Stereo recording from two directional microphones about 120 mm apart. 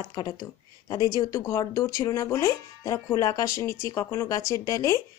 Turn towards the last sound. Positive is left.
turn(degrees=30)  # may be behind; listen again after turning